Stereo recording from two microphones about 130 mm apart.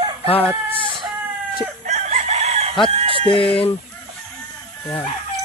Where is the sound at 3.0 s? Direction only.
45° right (ahead or behind).